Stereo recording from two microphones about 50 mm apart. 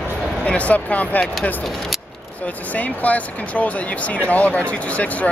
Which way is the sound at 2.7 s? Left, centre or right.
Left.